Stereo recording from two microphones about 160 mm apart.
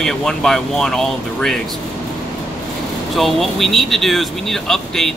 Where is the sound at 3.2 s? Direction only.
Centre (ahead or behind).